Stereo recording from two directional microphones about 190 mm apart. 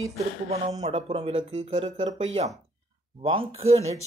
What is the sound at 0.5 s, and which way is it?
Speech, 35° right (ahead or behind).